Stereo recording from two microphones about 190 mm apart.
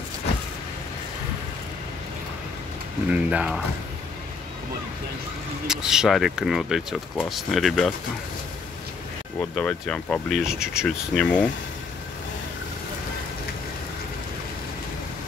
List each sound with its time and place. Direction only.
3.1 s speech: 5° right (ahead or behind)
5.7 s speech: 5° right (ahead or behind)
9.4 s speech: 5° left (ahead or behind)